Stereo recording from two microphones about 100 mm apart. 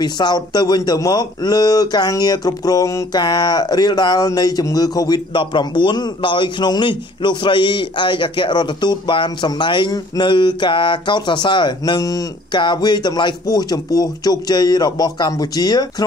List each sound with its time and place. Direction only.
0.0 s speech: 45° left (ahead or behind)
5.3 s a man's voice: 55° left (ahead or behind)